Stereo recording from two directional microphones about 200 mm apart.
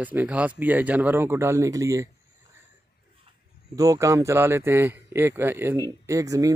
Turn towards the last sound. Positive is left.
turn(degrees=-15)  # may be behind; listen again after turning